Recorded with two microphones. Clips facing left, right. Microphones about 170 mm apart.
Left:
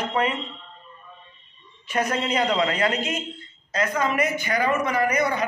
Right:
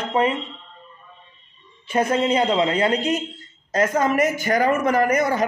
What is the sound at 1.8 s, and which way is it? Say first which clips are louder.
A man's voice: right 5 dB; 25° right (ahead or behind).